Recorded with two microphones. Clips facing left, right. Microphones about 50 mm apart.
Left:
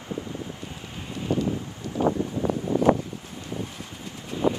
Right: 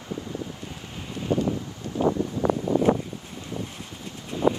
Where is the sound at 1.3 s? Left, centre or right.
Right.